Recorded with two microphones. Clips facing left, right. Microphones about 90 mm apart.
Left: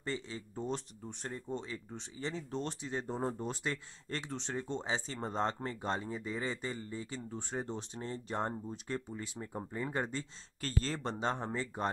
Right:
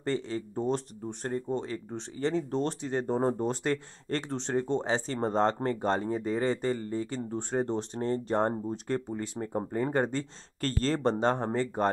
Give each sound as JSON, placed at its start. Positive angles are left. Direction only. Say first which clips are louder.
{"t": 0.0, "sound": "speech", "louder": "right 9 dB", "side_deg": -60}
{"t": 1.2, "sound": "speech", "louder": "right 9 dB", "side_deg": -50}
{"t": 2.0, "sound": "speech", "louder": "right 12 dB", "side_deg": -60}
{"t": 3.2, "sound": "speech", "louder": "right 9 dB", "side_deg": -40}